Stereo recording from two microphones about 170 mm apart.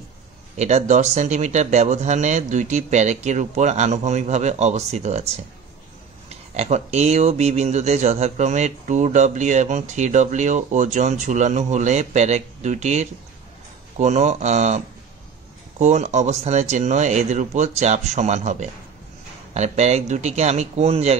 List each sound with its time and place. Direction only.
0.6 s speech: 45° right (ahead or behind)
15.8 s speech: 45° right (ahead or behind)